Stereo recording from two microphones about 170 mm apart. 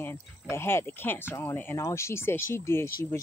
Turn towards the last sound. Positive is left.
turn(degrees=15)  # may be behind; listen again after turning